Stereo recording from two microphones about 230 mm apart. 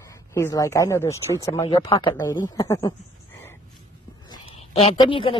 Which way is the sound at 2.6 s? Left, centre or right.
Centre.